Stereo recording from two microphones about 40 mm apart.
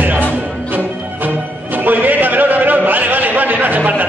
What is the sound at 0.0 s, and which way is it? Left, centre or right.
Music, right.